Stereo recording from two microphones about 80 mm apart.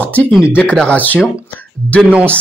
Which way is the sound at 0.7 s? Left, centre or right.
Centre.